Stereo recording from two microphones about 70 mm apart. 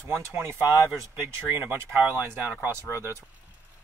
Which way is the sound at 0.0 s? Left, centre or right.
Right.